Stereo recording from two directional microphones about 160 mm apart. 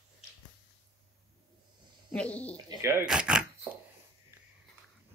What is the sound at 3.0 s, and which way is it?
Speech, 5° right (ahead or behind).